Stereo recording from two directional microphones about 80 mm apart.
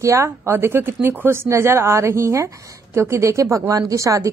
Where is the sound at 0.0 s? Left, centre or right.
Right.